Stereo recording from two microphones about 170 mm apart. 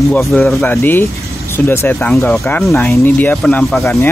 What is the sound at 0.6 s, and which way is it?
Speech, 10° left (ahead or behind).